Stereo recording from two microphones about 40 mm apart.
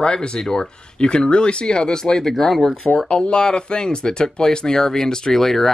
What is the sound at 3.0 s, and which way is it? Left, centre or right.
Speech, left.